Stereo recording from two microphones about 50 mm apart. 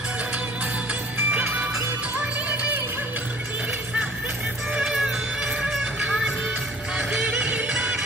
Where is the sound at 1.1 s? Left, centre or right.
Right.